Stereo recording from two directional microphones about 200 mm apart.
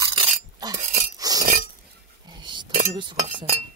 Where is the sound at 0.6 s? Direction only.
20° right (ahead or behind).